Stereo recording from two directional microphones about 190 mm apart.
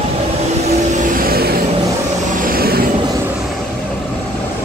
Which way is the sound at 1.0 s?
50° right (ahead or behind).